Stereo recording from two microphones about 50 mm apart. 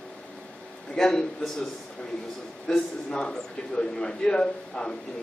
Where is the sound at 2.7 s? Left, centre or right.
Centre.